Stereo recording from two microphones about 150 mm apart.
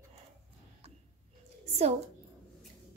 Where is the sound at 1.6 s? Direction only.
45° right (ahead or behind).